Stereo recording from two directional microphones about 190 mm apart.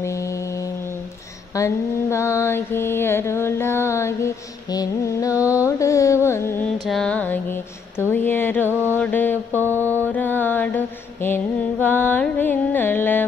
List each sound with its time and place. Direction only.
1.5 s mantra: 15° left (ahead or behind)
5.5 s carnatic music: 15° left (ahead or behind)
6.9 s music: 5° left (ahead or behind)
8.0 s mantra: 10° left (ahead or behind)